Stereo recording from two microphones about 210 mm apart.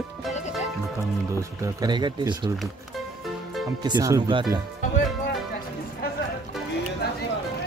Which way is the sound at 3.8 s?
20° right (ahead or behind).